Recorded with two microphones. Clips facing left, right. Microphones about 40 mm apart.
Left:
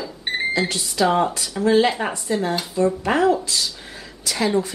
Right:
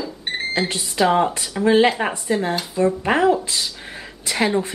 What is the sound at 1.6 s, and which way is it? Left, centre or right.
Speech, right.